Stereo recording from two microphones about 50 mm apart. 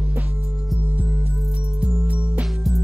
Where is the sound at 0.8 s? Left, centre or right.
Right.